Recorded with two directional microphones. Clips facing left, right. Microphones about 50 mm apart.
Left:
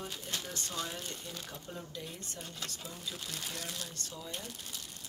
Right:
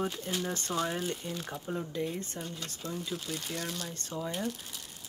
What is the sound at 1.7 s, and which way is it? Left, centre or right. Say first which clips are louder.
Speech: right 12 dB; right.